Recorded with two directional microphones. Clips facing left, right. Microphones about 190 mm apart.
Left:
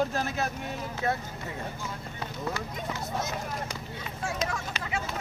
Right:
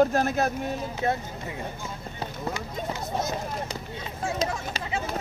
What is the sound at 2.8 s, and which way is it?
Speech, 30° right (ahead or behind).